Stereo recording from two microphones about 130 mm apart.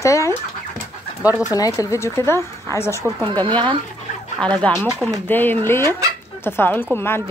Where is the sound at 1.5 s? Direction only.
25° left (ahead or behind).